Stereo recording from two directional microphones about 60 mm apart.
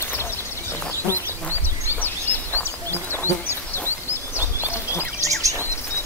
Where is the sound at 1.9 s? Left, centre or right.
Left.